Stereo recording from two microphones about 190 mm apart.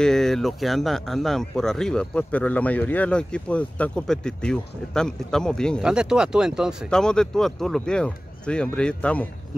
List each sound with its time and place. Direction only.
0.0 s speech: 5° left (ahead or behind)